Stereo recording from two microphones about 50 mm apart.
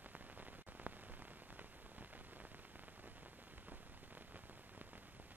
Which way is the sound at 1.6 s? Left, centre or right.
Right.